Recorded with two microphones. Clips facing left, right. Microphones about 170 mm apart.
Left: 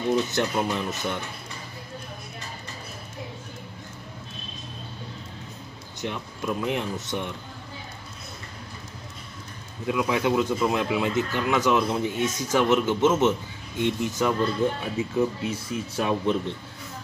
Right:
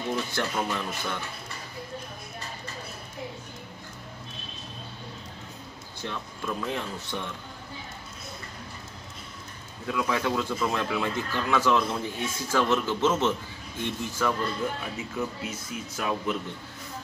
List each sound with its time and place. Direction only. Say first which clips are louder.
0.1 s speech: left 6 dB; 20° left (ahead or behind)
5.9 s speech: left 4 dB; 15° left (ahead or behind)
9.8 s speech: left 4 dB; 20° left (ahead or behind)